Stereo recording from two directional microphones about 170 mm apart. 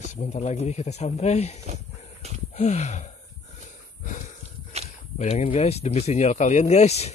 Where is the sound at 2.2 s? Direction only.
40° right (ahead or behind).